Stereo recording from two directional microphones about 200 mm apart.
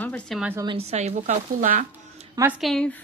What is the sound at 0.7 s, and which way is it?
Speech, 30° right (ahead or behind).